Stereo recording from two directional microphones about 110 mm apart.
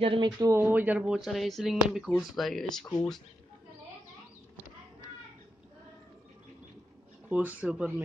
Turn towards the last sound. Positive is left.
turn(degrees=-10)  # may be behind; listen again after turning